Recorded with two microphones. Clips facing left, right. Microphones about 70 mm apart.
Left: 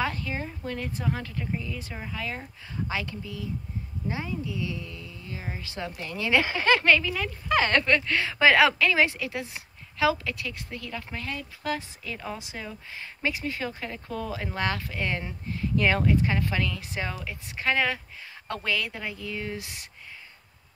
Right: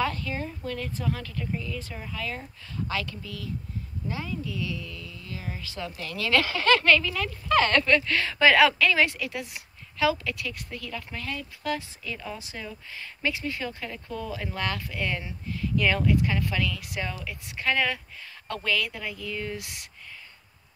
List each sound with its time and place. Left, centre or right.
0.0 s speech: centre